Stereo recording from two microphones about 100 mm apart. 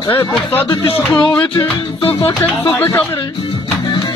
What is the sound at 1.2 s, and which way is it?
Music, 40° left (ahead or behind).